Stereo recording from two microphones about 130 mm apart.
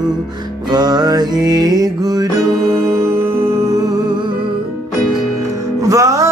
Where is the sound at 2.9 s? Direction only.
20° right (ahead or behind).